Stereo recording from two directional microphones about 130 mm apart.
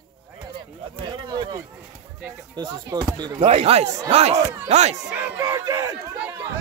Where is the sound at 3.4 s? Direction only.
50° right (ahead or behind).